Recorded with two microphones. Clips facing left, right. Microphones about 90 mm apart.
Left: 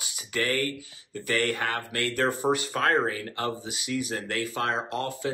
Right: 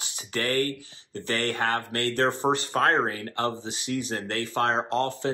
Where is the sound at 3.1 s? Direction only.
40° right (ahead or behind).